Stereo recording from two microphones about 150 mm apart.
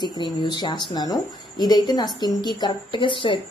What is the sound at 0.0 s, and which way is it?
A woman's voice, 30° left (ahead or behind).